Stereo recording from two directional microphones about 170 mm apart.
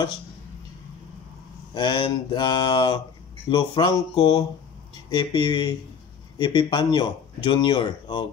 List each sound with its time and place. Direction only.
1.7 s mantra: 25° left (ahead or behind)